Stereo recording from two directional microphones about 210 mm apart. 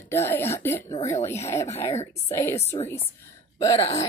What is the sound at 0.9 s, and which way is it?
Speech, 30° left (ahead or behind).